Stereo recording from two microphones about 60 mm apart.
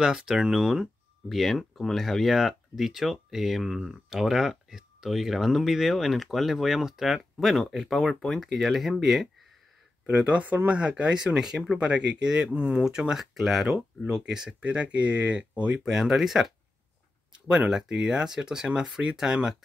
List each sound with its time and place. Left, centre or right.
0.0 s speech: centre
1.3 s speech: centre
10.1 s speech: right
12.4 s speech: right
12.8 s speech: centre
15.8 s speech: centre